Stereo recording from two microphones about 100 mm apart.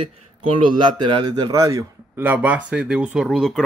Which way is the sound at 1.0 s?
50° right (ahead or behind).